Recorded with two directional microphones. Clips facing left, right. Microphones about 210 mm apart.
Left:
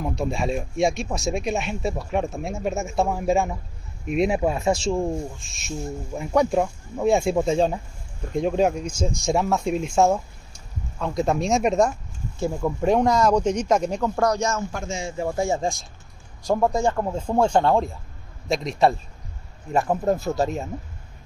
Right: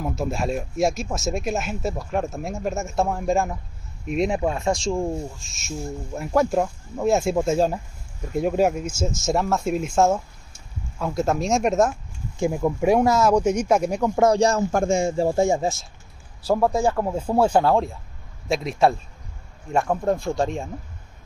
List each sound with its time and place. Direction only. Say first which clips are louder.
0.0 s speech: even; centre (ahead or behind)
12.4 s speech: right 3 dB; 15° right (ahead or behind)
14.2 s a man's voice: right 7 dB; 30° right (ahead or behind); by 15.1 s 50° right (ahead or behind)
15.1 s speech: right 5 dB; 25° right (ahead or behind)
15.5 s speech: right 2 dB; 5° right (ahead or behind)